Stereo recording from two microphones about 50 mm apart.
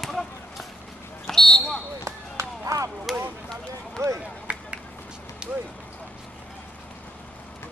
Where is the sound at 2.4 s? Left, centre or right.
Right.